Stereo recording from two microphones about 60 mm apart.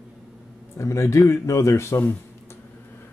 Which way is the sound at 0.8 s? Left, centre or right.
Left.